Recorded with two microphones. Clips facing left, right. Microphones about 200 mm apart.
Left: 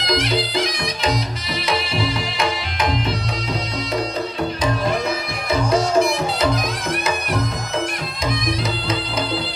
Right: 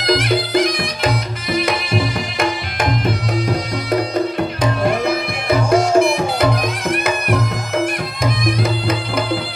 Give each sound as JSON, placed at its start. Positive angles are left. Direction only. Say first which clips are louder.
{"t": 0.0, "sound": "music", "louder": "right 4 dB", "side_deg": -55}
{"t": 5.0, "sound": "music", "louder": "right 5 dB", "side_deg": -55}